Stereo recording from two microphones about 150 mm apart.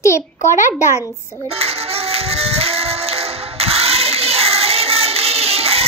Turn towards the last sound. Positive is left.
turn(degrees=-40)  # may be behind; listen again after turning